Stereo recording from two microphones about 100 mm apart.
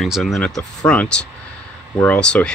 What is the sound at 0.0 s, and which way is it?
Speech, centre (ahead or behind).